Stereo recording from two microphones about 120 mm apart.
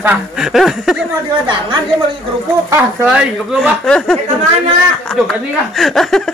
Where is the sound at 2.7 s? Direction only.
20° right (ahead or behind).